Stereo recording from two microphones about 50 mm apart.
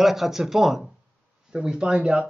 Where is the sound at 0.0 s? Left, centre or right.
Centre.